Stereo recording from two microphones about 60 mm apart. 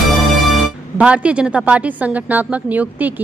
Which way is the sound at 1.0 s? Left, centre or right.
Centre.